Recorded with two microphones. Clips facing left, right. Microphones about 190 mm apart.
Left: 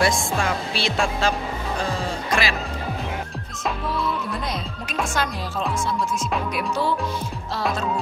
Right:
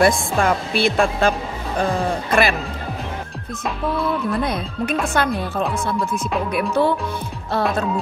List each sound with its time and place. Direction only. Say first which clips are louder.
0.0 s speech: right 5 dB; 55° right (ahead or behind)
4.4 s speech: right 7 dB; 55° right (ahead or behind)